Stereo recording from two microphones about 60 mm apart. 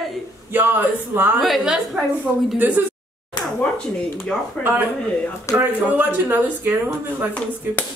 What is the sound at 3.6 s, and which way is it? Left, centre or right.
Speech, centre.